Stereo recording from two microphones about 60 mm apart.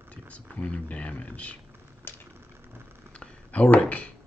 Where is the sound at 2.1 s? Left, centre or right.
Left.